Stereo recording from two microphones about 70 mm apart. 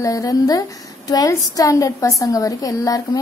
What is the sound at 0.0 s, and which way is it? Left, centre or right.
A woman's voice, left.